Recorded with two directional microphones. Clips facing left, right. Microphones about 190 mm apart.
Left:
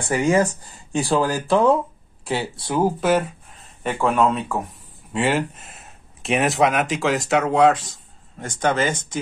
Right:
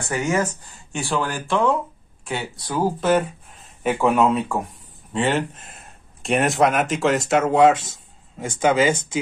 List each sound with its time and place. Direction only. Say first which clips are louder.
0.0 s speech: left 4 dB; 30° left (ahead or behind)
3.0 s speech: right 4 dB; 10° left (ahead or behind)
3.8 s speech: right 1 dB; 5° right (ahead or behind)